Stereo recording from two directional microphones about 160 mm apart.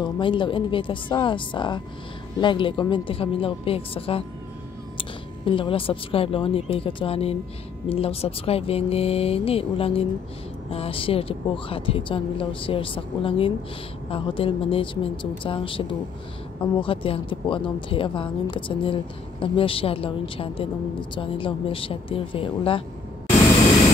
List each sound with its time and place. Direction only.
0.0 s a woman's voice: 30° left (ahead or behind)